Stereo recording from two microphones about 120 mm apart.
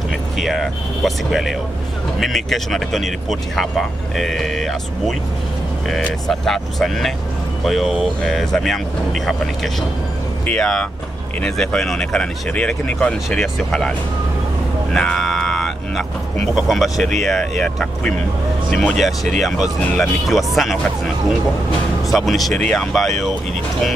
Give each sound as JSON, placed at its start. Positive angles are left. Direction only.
{"t": 0.4, "sound": "speech", "side_deg": 0}
{"t": 15.0, "sound": "a sound", "side_deg": 5}
{"t": 16.5, "sound": "speech", "side_deg": 0}
{"t": 22.0, "sound": "speech", "side_deg": 0}